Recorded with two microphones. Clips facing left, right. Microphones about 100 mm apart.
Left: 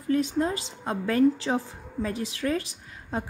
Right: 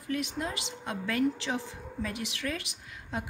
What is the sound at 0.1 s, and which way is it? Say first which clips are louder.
A woman's voice: left 8 dB; 35° left (ahead or behind).